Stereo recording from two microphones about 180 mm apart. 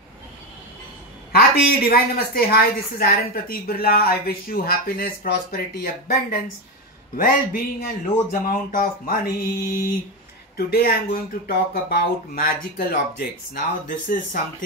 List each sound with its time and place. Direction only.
1.3 s a woman's voice: 60° left (ahead or behind)